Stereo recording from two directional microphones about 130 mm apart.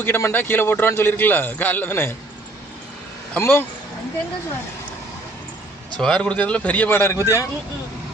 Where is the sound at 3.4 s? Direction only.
15° left (ahead or behind).